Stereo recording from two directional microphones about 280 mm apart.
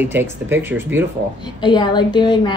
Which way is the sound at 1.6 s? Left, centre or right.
Centre.